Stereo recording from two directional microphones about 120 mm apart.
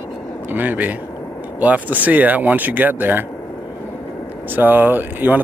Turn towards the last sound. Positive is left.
turn(degrees=-15)  # may be behind; listen again after turning